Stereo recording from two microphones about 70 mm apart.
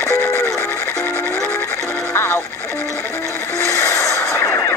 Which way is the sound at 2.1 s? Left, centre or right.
Left.